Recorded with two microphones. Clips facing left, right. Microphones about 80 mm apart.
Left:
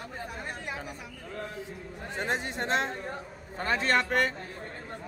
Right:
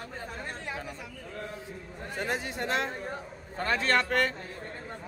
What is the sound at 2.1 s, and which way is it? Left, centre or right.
Speech, left.